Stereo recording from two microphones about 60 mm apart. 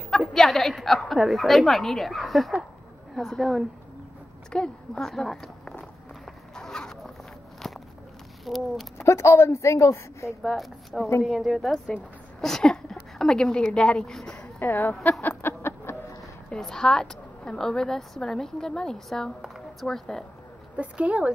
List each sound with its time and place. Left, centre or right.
0.3 s speech: centre
4.5 s walk: centre
8.5 s speech: centre
8.9 s speech: left
10.4 s a woman's voice: centre
14.6 s speech: left
15.2 s a sound: left
16.4 s a woman's voice: centre
19.4 s a sound: centre
19.9 s a woman's voice: centre
20.7 s a woman's voice: right